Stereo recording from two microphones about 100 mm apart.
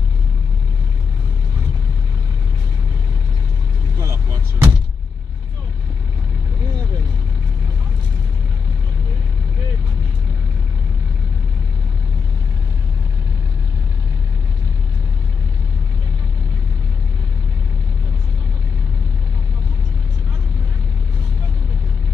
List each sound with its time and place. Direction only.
4.0 s vehicle: 30° right (ahead or behind)